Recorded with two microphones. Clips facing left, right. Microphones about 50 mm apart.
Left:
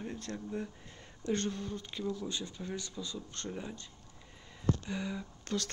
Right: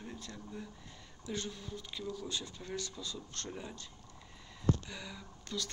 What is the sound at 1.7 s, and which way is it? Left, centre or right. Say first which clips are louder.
Speech: left 5 dB; left.